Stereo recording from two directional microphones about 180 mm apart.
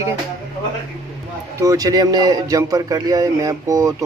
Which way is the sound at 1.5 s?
20° right (ahead or behind).